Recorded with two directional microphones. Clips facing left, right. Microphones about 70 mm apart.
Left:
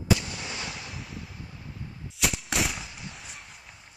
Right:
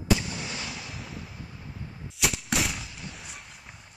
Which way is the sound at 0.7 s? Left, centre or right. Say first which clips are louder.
Even; centre.